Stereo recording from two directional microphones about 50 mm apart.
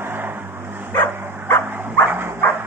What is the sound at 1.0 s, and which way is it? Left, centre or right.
Bow-wow, left.